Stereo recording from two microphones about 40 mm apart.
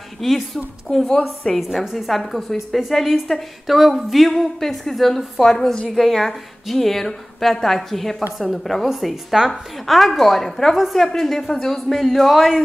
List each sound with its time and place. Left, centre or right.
0.2 s a woman's voice: centre
0.9 s a woman's voice: centre
1.5 s a woman's voice: centre
9.5 s a woman's voice: centre